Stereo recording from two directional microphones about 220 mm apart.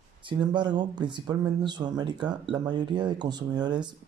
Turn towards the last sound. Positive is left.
turn(degrees=-20)  # may be behind; listen again after turning